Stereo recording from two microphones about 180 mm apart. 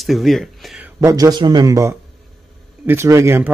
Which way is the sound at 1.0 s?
20° right (ahead or behind).